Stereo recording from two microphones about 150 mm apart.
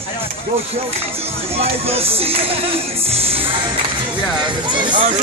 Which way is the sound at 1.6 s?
40° right (ahead or behind).